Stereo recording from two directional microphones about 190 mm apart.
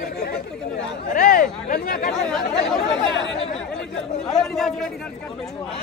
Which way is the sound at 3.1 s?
75° left (ahead or behind).